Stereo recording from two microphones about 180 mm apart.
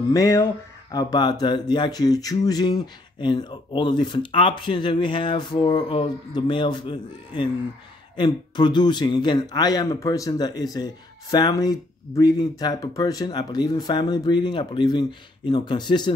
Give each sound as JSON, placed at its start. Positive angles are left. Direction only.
{"t": 0.1, "sound": "speech", "side_deg": 20}